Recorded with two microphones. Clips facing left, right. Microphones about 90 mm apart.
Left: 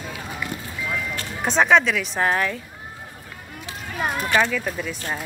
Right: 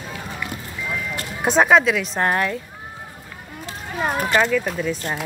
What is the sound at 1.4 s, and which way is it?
Speech, 5° right (ahead or behind).